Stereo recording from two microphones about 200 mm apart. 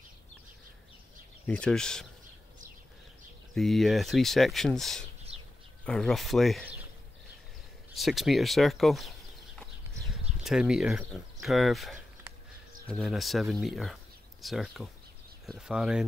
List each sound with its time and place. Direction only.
1.5 s speech: 5° left (ahead or behind)
3.5 s speech: centre (ahead or behind)
5.3 s bird: 30° right (ahead or behind)
5.9 s speech: centre (ahead or behind)
7.9 s speech: centre (ahead or behind)
10.4 s speech: 5° right (ahead or behind)